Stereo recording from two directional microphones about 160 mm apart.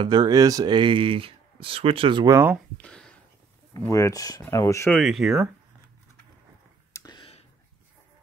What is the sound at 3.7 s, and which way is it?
Speech, 20° left (ahead or behind).